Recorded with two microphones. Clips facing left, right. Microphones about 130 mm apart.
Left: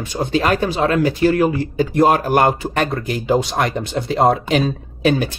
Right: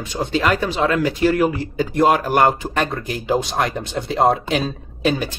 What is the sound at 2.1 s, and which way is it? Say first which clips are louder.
Speech: left 1 dB; 40° left (ahead or behind).